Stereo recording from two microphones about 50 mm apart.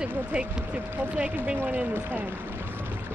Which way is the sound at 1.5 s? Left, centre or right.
Right.